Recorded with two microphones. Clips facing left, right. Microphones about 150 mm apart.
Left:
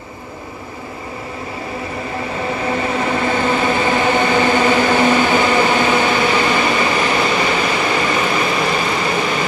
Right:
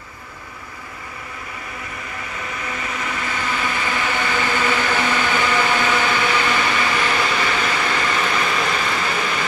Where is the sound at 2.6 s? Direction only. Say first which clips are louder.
Left 10 dB; 30° left (ahead or behind).